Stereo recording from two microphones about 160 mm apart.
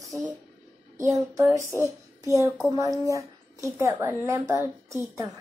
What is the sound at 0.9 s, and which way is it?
Child singing, 20° right (ahead or behind).